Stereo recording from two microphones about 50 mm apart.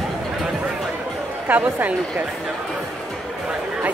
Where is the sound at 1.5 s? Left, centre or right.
Right.